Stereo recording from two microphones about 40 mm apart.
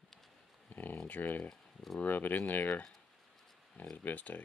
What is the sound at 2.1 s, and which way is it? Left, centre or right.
Speech, left.